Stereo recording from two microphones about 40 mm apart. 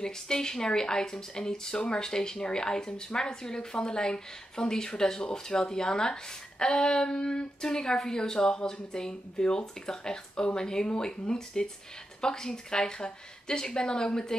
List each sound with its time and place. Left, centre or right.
0.0 s speech: centre